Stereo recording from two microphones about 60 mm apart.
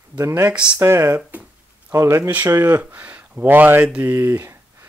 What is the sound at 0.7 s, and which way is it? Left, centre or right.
Speech, right.